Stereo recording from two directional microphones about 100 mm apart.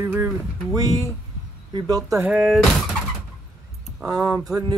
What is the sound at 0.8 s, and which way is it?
Speech, 35° right (ahead or behind).